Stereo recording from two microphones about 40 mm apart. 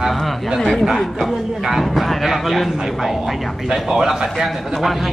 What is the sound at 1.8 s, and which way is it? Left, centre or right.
A man's voice, centre.